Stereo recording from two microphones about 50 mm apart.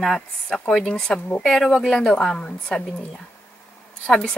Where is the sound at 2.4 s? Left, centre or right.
Centre.